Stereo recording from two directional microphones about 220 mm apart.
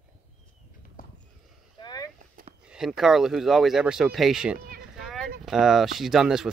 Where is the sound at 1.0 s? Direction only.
40° left (ahead or behind).